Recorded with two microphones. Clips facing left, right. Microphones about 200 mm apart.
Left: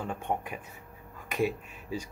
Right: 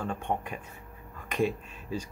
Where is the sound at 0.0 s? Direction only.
10° left (ahead or behind).